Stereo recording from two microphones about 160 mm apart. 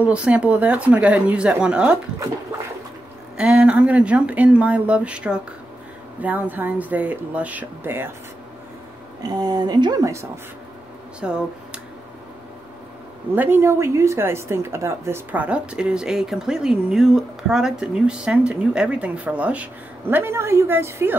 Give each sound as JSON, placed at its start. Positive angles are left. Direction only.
{"t": 0.0, "sound": "speech", "side_deg": -5}
{"t": 3.3, "sound": "speech", "side_deg": -5}
{"t": 9.2, "sound": "a woman's voice", "side_deg": -25}
{"t": 11.1, "sound": "speech", "side_deg": -5}
{"t": 13.3, "sound": "speech", "side_deg": -15}